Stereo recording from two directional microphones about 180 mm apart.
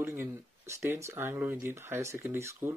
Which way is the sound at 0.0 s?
15° right (ahead or behind).